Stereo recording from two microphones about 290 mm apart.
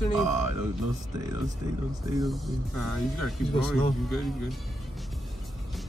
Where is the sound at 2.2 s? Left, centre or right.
Centre.